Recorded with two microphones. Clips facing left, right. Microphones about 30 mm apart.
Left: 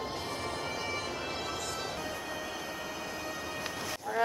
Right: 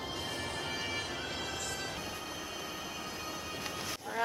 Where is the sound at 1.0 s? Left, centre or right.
Centre.